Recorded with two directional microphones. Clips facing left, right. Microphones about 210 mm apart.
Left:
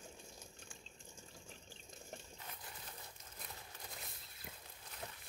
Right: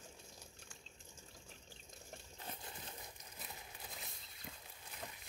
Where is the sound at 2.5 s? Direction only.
25° right (ahead or behind).